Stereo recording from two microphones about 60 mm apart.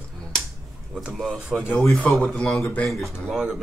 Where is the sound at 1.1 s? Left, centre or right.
Centre.